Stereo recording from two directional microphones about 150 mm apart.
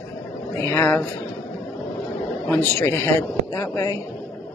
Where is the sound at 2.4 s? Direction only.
15° left (ahead or behind).